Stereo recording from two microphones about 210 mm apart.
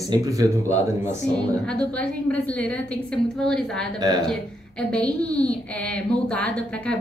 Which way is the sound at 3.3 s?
Centre (ahead or behind).